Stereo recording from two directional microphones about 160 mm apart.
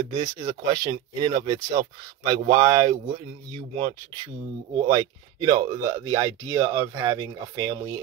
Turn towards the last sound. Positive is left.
turn(degrees=-20)  # may be behind; listen again after turning